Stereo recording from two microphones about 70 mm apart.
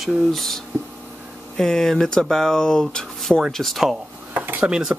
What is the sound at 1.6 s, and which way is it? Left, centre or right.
Speech, centre.